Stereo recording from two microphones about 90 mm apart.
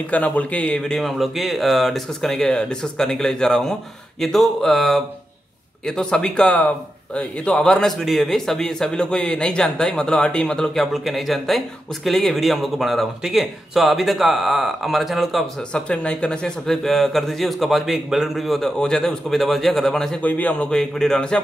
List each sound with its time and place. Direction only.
0.1 s a man's voice: 15° left (ahead or behind); by 15.4 s centre (ahead or behind)
15.7 s speech: 10° left (ahead or behind)
20.2 s a man's voice: 15° left (ahead or behind)